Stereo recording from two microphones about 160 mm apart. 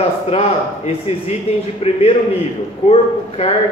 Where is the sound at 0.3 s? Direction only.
40° left (ahead or behind).